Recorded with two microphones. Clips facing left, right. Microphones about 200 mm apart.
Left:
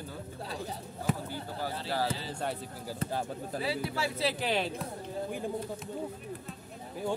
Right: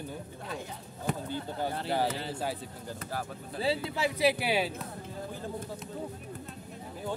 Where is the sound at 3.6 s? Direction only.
25° right (ahead or behind); by 4.7 s 10° right (ahead or behind).